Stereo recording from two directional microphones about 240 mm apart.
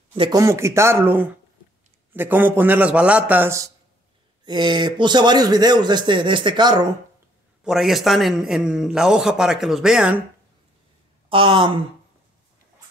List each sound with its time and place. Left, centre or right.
0.1 s speech: centre
7.6 s a man's voice: centre
11.2 s a woman's voice: right